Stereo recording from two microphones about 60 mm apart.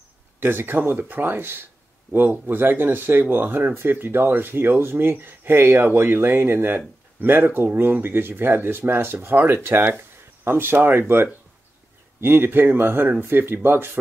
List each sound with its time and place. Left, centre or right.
0.4 s speech: right